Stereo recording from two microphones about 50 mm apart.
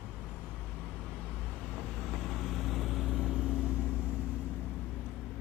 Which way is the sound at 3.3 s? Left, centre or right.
Right.